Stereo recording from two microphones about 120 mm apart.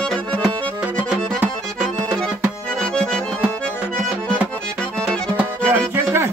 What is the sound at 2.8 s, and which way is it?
Accordion, 5° left (ahead or behind).